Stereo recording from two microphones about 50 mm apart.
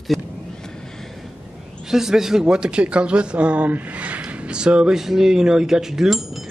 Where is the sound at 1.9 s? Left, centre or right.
Centre.